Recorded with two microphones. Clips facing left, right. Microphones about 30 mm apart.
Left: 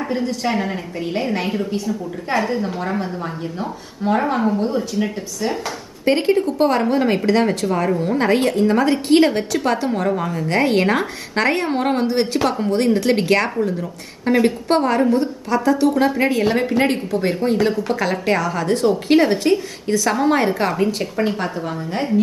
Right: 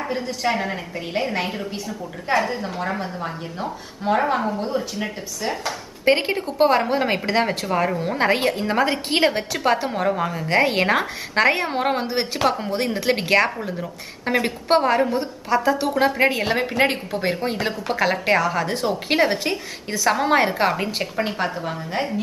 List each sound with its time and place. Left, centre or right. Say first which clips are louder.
0.1 s a woman's voice: left 2 dB; centre
6.0 s a woman's voice: left 3 dB; centre
21.5 s a woman's voice: left 2 dB; centre